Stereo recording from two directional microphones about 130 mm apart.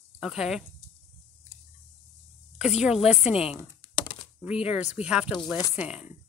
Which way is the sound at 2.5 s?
5° right (ahead or behind).